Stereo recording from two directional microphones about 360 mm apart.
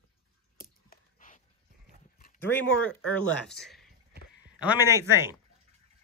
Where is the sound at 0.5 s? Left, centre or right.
Left.